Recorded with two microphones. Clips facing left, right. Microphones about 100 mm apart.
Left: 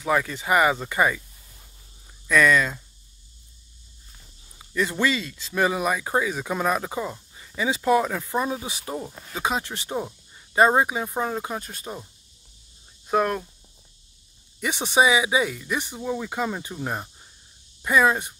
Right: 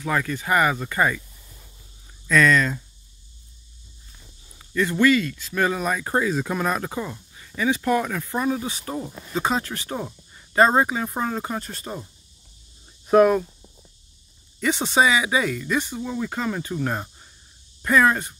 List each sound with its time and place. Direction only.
0.0 s speech: 15° left (ahead or behind)
2.2 s speech: 10° left (ahead or behind)
4.6 s speech: 15° left (ahead or behind)
8.9 s speech: 5° left (ahead or behind)
9.7 s speech: 20° left (ahead or behind)
9.9 s speech: 10° left (ahead or behind)
14.6 s speech: 15° left (ahead or behind)